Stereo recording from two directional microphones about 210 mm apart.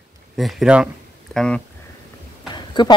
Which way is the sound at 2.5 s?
20° left (ahead or behind).